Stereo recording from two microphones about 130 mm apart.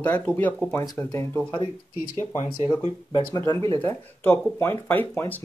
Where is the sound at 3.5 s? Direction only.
25° left (ahead or behind).